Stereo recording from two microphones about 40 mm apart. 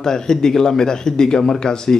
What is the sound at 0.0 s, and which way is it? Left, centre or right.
Speech, centre.